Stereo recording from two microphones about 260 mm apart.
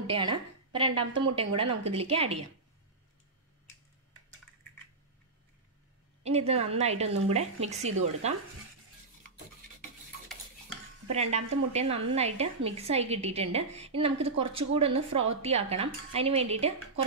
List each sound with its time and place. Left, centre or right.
0.0 s a woman's voice: centre
1.6 s a woman's voice: right
2.0 s a woman's voice: right
6.2 s a woman's voice: right
11.3 s a woman's voice: right